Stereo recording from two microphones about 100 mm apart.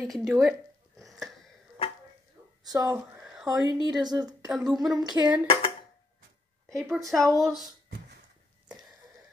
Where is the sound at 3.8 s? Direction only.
45° right (ahead or behind).